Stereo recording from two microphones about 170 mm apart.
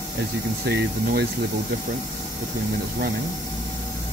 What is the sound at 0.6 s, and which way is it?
Speech, 70° right (ahead or behind).